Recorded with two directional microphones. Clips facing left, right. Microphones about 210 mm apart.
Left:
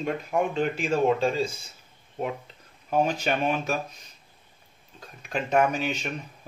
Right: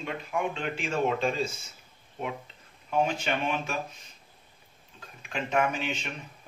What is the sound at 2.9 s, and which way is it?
Speech, 40° left (ahead or behind).